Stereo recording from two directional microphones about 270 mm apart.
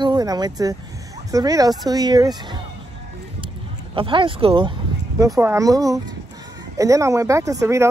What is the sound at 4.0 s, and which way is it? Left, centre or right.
Speech, centre.